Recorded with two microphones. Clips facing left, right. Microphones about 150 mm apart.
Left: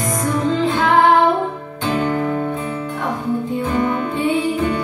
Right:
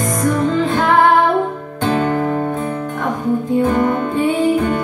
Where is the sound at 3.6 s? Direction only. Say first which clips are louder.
Right 4 dB; 45° right (ahead or behind).